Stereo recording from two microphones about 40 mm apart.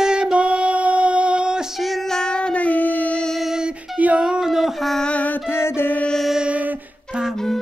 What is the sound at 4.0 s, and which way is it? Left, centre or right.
Music, right.